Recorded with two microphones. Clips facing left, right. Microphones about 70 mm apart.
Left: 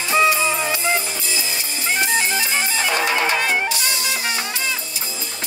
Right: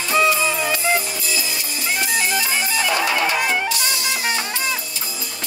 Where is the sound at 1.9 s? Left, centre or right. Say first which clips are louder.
Left 1 dB; left.